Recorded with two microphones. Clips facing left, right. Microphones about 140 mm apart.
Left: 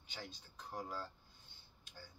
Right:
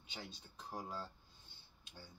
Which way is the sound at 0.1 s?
25° right (ahead or behind).